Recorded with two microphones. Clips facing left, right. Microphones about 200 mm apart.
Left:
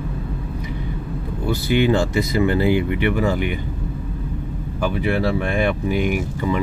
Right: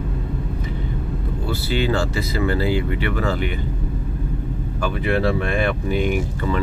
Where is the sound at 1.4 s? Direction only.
20° left (ahead or behind).